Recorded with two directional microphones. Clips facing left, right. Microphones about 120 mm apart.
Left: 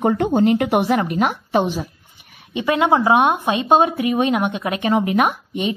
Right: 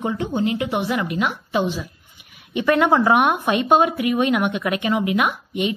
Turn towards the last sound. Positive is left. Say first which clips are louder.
# left 2 dB
turn(degrees=35)  # may be behind; listen again after turning